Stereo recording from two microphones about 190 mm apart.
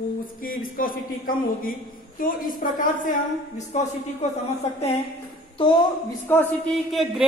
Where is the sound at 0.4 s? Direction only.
50° left (ahead or behind).